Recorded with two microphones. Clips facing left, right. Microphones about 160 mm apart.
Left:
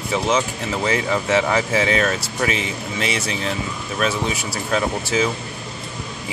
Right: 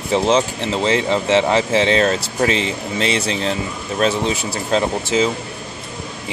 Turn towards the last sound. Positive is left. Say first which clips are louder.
# right 3 dB
turn(degrees=-25)  # may be behind; listen again after turning